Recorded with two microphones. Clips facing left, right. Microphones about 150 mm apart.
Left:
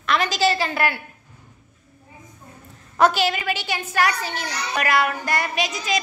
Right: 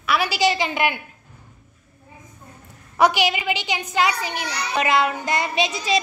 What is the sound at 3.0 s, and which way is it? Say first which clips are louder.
A child's voice: even; 15° right (ahead or behind).